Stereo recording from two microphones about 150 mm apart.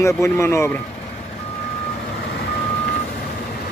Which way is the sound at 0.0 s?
20° left (ahead or behind).